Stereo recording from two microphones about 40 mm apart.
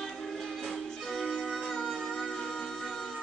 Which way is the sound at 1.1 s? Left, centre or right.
Centre.